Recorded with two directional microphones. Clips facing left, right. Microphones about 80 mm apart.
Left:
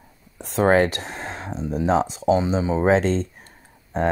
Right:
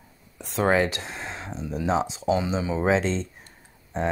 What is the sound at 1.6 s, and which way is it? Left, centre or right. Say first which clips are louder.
Speech: left 4 dB; left.